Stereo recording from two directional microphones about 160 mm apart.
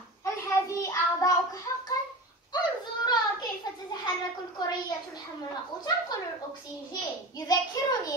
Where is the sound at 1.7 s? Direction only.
25° left (ahead or behind).